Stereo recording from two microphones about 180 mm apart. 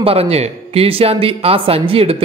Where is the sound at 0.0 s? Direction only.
35° right (ahead or behind).